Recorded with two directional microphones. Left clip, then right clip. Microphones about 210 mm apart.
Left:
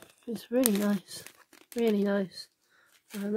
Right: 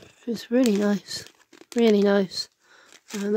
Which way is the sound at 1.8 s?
40° right (ahead or behind).